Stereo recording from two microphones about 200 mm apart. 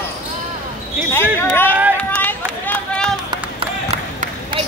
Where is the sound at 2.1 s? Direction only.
10° left (ahead or behind).